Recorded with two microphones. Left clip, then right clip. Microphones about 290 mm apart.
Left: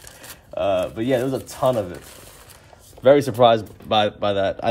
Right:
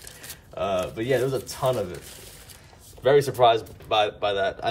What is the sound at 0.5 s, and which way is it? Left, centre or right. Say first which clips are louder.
Speech: left 5 dB; left.